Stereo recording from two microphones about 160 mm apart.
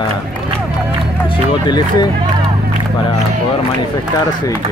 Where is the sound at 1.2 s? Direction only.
30° left (ahead or behind).